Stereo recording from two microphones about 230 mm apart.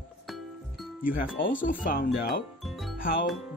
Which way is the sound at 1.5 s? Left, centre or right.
Left.